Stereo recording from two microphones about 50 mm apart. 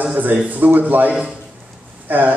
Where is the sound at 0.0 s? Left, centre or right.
Right.